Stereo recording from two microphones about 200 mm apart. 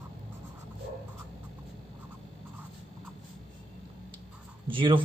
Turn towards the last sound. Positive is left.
turn(degrees=-25)  # may be behind; listen again after turning